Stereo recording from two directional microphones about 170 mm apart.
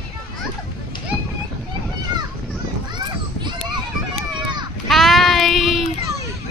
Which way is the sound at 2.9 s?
25° right (ahead or behind).